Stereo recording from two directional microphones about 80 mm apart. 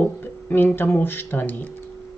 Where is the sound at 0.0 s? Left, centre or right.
Left.